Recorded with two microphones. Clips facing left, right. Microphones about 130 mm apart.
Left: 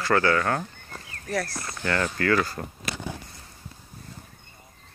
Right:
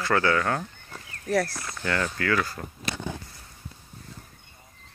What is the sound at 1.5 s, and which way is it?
Speech, 5° left (ahead or behind).